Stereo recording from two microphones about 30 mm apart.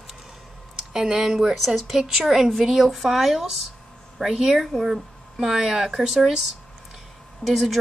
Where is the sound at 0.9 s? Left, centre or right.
Centre.